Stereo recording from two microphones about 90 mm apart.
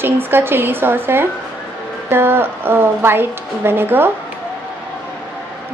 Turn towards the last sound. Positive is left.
turn(degrees=-25)  # may be behind; listen again after turning